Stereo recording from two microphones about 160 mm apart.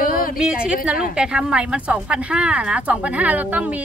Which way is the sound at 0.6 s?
5° right (ahead or behind).